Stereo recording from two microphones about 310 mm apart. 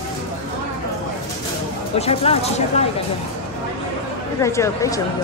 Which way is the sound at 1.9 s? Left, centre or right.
Centre.